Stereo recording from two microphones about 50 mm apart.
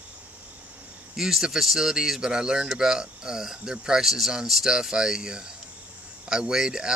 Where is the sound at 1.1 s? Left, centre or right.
Centre.